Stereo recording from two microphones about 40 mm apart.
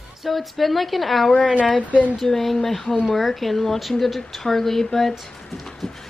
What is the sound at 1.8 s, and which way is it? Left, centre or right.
Speech, left.